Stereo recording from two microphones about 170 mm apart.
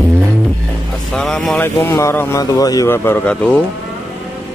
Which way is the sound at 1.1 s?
5° left (ahead or behind).